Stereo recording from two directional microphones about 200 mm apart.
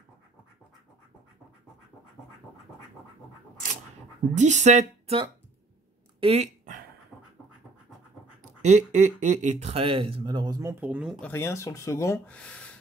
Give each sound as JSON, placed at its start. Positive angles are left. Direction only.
{"t": 4.4, "sound": "speech", "side_deg": -35}
{"t": 6.2, "sound": "a sound", "side_deg": -35}
{"t": 8.6, "sound": "speech", "side_deg": -35}
{"t": 11.2, "sound": "speech", "side_deg": 10}